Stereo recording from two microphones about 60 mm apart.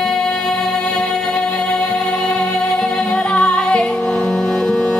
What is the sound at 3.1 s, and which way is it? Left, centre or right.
Music, centre.